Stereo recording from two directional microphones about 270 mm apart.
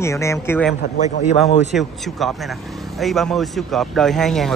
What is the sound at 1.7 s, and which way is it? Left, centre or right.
Speech, centre.